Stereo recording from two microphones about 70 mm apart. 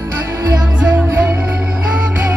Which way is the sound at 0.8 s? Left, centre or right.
Right.